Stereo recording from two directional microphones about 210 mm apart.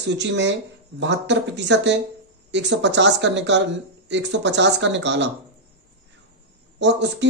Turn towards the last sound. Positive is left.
turn(degrees=-55)  # may be behind; listen again after turning